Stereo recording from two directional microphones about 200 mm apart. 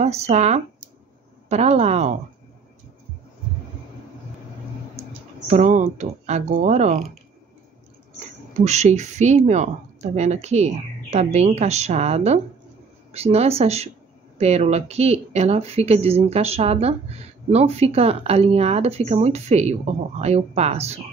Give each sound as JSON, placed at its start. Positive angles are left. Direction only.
{"t": 0.0, "sound": "speech", "side_deg": -35}
{"t": 5.5, "sound": "speech", "side_deg": -35}
{"t": 8.6, "sound": "speech", "side_deg": -35}